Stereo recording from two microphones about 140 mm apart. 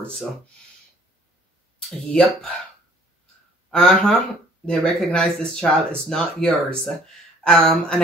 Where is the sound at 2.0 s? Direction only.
5° left (ahead or behind).